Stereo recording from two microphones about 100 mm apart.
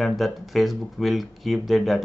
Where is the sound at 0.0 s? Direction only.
Centre (ahead or behind).